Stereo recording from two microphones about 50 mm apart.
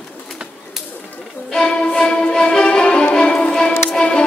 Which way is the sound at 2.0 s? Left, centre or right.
Centre.